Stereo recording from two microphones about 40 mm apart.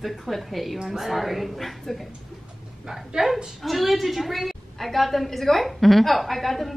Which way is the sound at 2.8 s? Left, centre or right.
Centre.